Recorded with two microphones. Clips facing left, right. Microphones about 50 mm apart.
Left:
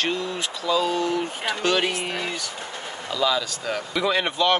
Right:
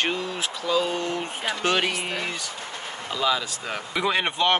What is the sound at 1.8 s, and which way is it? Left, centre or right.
Speech, centre.